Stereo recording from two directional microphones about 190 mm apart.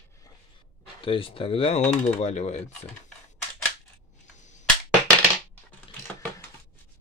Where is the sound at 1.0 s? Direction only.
30° left (ahead or behind).